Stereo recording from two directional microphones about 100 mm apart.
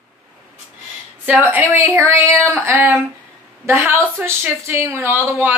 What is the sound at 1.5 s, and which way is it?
Speech, 25° right (ahead or behind).